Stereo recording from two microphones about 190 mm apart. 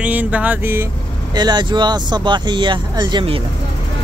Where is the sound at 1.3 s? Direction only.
20° right (ahead or behind).